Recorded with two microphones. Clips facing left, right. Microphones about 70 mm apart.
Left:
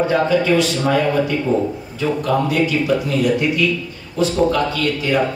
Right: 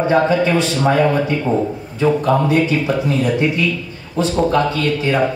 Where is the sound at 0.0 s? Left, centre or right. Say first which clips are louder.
Right 2 dB; right.